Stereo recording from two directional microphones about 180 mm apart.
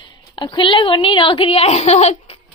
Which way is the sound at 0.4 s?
25° left (ahead or behind).